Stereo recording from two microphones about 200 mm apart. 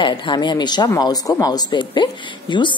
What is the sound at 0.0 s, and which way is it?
Speech, 25° left (ahead or behind).